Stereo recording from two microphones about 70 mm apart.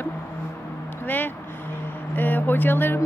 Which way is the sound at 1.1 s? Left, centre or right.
Left.